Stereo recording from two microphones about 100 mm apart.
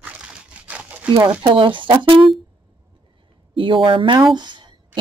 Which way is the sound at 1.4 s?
55° right (ahead or behind).